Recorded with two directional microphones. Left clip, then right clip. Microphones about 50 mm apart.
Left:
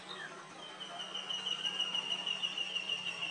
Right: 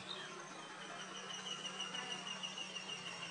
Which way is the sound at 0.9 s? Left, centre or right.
Left.